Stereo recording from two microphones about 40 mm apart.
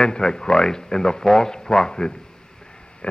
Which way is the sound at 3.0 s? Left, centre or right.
Left.